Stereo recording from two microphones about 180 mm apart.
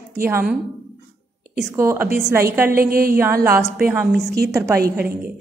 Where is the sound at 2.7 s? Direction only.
55° right (ahead or behind).